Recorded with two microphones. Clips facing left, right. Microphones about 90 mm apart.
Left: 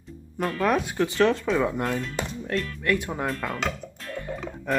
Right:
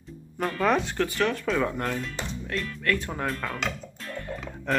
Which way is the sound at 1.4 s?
10° left (ahead or behind).